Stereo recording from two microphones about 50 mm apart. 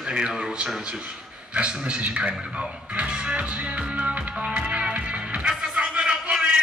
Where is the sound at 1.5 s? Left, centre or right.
Right.